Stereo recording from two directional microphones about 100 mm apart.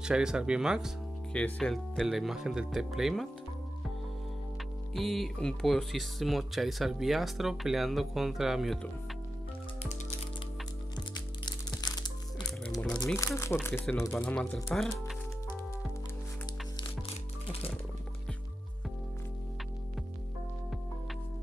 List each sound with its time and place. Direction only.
0.0 s speech: 10° right (ahead or behind)
1.3 s speech: 5° left (ahead or behind)
4.9 s speech: centre (ahead or behind)
11.1 s music: 45° left (ahead or behind)
13.2 s speech: 30° left (ahead or behind)
14.2 s speech: 10° left (ahead or behind)
17.5 s music: 75° left (ahead or behind)